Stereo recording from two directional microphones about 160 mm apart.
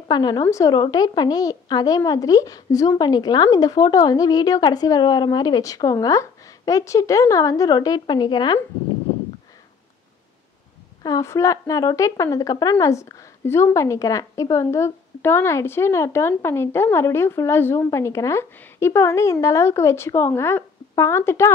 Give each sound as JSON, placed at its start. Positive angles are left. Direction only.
{"t": 0.1, "sound": "a woman's voice", "side_deg": 25}
{"t": 11.0, "sound": "a woman's voice", "side_deg": 25}